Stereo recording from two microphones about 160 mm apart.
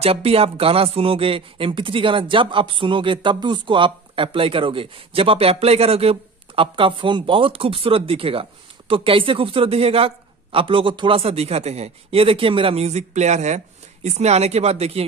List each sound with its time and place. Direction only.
0.0 s speech: 40° right (ahead or behind)